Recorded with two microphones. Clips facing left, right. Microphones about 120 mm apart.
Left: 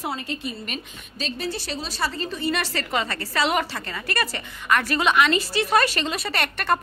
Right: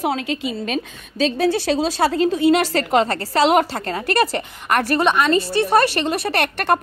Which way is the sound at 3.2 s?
45° right (ahead or behind).